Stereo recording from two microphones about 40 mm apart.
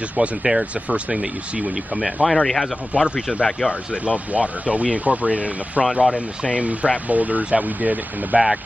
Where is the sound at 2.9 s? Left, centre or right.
Right.